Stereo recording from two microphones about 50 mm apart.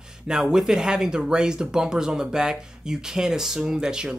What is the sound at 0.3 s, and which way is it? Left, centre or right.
Speech, centre.